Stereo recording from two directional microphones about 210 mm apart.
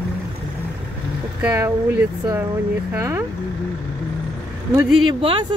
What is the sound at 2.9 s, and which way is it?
Speech, 15° right (ahead or behind).